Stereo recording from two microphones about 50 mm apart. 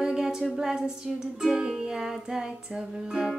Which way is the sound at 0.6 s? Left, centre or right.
Centre.